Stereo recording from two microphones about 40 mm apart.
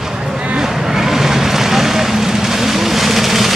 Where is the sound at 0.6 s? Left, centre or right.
Centre.